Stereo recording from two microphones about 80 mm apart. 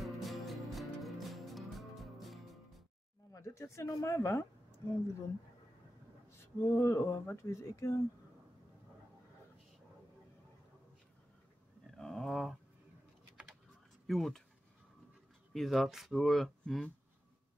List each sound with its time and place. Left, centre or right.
0.0 s music: centre
3.3 s speech: left
6.4 s speech: left
11.9 s a sound: centre
14.0 s speech: centre
15.5 s speech: centre